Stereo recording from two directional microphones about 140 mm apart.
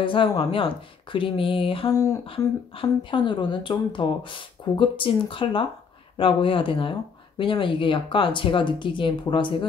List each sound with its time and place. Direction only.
0.0 s speech: 35° left (ahead or behind)
1.9 s speech: 25° left (ahead or behind)
2.2 s speech: 40° left (ahead or behind)